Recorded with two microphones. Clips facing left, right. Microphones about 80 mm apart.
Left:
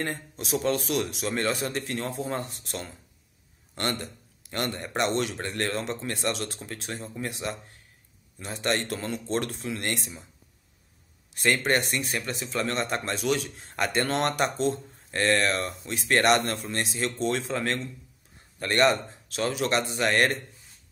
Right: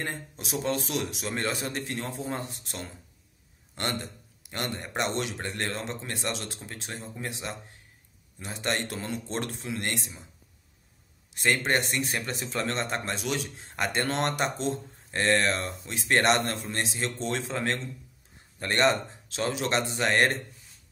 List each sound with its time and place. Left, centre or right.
0.0 s a man's voice: centre
2.0 s speech: left
2.2 s a man's voice: centre
8.4 s a man's voice: centre
11.3 s a man's voice: centre
12.0 s a man's voice: right